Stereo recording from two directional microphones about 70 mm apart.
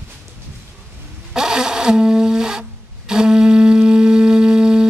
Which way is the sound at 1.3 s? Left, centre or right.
Centre.